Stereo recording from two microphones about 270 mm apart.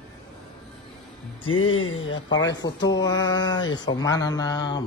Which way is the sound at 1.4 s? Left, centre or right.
Left.